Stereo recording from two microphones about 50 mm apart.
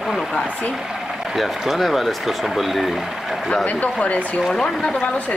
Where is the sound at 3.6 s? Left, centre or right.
Left.